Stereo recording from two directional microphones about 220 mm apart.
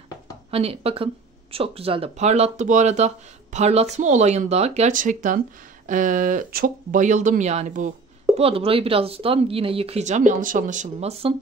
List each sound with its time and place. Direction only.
0.5 s speech: 25° right (ahead or behind)